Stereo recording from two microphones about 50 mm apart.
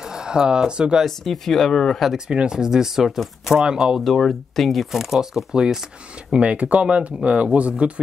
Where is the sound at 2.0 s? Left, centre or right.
Centre.